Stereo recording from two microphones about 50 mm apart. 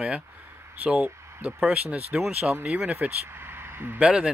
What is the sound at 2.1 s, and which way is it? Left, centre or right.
Speech, centre.